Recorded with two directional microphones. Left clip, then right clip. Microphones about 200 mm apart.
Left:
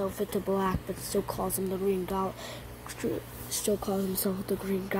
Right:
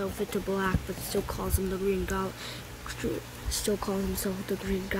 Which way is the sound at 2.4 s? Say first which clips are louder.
Right 2 dB; 5° right (ahead or behind).